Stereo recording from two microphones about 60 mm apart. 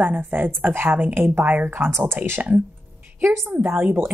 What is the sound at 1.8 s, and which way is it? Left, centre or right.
A woman's voice, right.